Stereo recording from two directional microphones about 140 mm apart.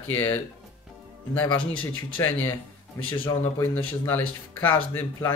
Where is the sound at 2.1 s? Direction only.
15° left (ahead or behind).